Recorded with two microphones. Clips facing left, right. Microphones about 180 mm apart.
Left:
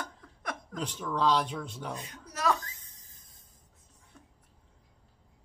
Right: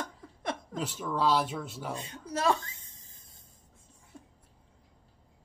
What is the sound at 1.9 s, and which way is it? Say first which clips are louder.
A child's voice: right 6 dB; 25° right (ahead or behind).